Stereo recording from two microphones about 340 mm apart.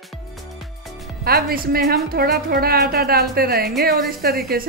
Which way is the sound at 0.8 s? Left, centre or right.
Centre.